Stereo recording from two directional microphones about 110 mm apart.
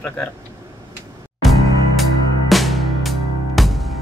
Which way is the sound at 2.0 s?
Centre (ahead or behind).